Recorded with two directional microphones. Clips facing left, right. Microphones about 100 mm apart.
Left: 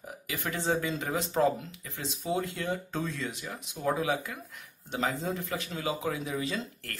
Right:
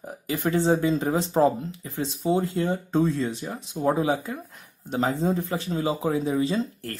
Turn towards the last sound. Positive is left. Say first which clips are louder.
# right 8 dB
turn(degrees=-30)  # may be behind; listen again after turning